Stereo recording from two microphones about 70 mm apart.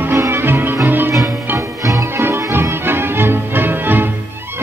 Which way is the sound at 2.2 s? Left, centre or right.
Right.